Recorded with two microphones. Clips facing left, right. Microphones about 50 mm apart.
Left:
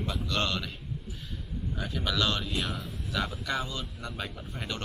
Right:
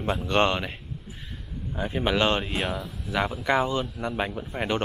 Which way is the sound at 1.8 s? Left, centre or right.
Right.